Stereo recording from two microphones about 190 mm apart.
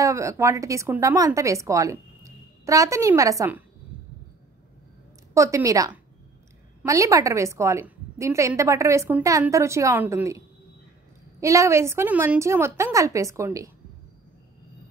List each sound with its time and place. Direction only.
0.0 s speech: 15° right (ahead or behind)
5.3 s a woman's voice: 15° right (ahead or behind)